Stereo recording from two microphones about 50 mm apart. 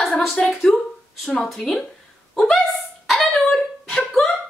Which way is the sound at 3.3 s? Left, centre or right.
Centre.